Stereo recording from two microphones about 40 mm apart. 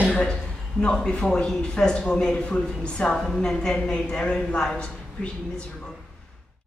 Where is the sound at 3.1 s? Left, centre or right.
Centre.